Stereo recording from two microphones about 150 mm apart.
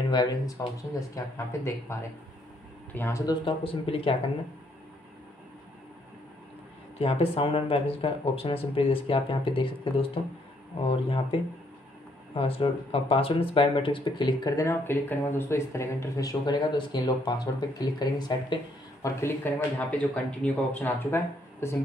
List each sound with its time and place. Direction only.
0.1 s speech: 30° left (ahead or behind)
3.4 s speech: 40° left (ahead or behind)
7.0 s speech: 40° left (ahead or behind)
19.0 s speech: 15° left (ahead or behind)